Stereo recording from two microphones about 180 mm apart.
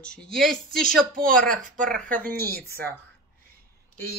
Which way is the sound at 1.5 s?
50° right (ahead or behind).